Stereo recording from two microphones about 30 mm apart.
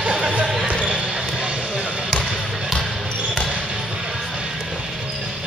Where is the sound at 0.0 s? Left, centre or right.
Right.